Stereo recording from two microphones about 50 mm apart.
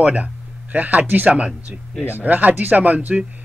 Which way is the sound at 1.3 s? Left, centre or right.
Right.